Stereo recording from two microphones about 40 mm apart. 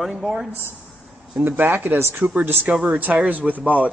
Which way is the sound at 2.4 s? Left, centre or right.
Right.